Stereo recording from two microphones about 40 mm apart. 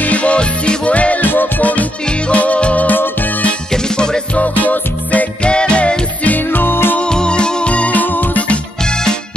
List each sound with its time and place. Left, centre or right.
0.0 s music: left
1.2 s music: left
2.0 s music: left
3.7 s music: centre
4.4 s music: left
5.4 s music: left
6.2 s music: left
7.1 s music: left
8.0 s music: left
8.8 s music: centre